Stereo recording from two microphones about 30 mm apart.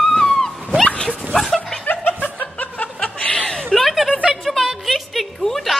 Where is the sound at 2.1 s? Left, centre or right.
Left.